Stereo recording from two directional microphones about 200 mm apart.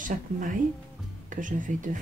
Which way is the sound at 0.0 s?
40° right (ahead or behind).